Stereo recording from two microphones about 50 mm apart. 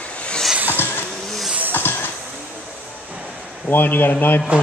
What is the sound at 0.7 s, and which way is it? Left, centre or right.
Vehicle, left.